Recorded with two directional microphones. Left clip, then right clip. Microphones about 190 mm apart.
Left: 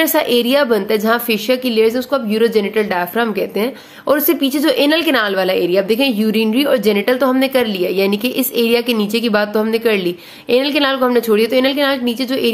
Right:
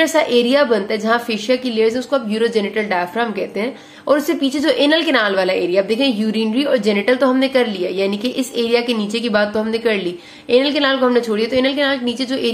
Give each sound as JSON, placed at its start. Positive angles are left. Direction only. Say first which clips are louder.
{"t": 0.0, "sound": "a woman's voice", "louder": "even", "side_deg": 35}
{"t": 4.1, "sound": "a woman's voice", "louder": "left 1 dB", "side_deg": 35}